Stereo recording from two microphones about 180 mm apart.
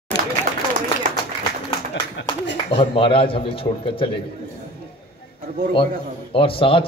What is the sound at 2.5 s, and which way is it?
A man's voice, 30° left (ahead or behind).